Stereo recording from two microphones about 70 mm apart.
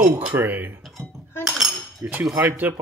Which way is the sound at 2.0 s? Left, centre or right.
Right.